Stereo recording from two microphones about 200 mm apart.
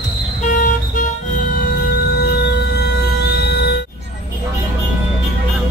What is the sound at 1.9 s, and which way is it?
Music, 50° left (ahead or behind).